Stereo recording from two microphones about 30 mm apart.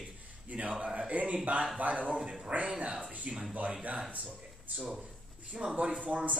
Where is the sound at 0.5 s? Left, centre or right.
Right.